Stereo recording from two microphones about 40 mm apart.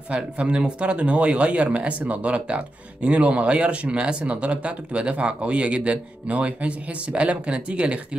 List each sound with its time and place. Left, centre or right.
0.1 s speech: right